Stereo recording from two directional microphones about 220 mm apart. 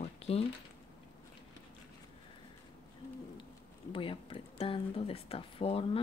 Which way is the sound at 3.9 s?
25° left (ahead or behind).